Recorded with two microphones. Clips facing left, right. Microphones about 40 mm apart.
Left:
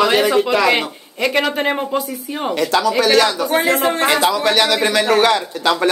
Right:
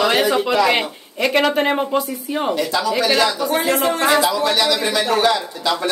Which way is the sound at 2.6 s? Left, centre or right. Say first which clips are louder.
Left 7 dB; left.